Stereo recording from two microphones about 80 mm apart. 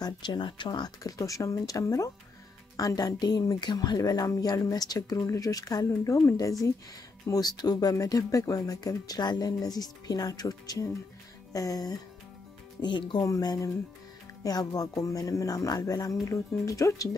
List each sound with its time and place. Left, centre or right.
0.0 s speech: left
12.8 s speech: left
13.3 s speech: left